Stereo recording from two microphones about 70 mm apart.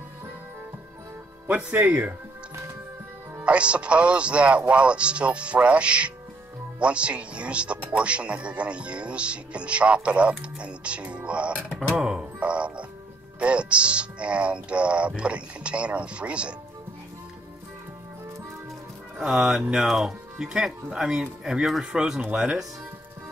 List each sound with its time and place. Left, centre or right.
1.9 s speech: right
3.4 s speech: centre
12.0 s music: centre
13.4 s speech: centre
19.1 s speech: centre